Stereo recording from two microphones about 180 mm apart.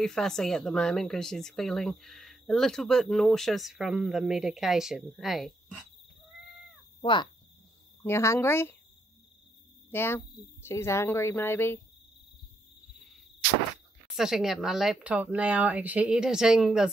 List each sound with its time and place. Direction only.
0.0 s speech: 5° left (ahead or behind)
7.0 s speech: 25° left (ahead or behind)
8.0 s speech: 15° left (ahead or behind)
9.8 s speech: 10° left (ahead or behind)
14.0 s speech: centre (ahead or behind)